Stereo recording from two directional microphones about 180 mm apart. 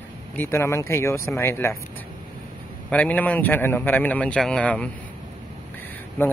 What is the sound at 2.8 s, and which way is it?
Speech, 5° left (ahead or behind).